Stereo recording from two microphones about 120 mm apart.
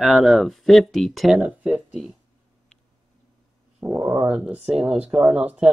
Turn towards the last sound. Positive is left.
turn(degrees=-10)  # may be behind; listen again after turning